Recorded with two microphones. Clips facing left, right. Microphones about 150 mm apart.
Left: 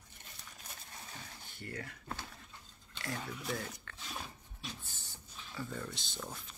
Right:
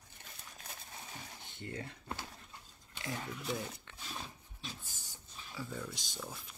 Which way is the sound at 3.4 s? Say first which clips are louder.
Right 1 dB; 15° right (ahead or behind).